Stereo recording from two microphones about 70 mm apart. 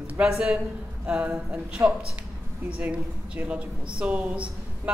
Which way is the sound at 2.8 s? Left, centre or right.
Centre.